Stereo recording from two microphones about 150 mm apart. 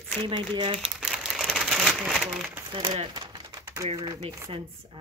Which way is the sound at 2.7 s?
35° right (ahead or behind).